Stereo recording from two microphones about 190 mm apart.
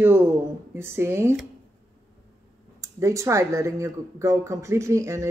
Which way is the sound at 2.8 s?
15° right (ahead or behind).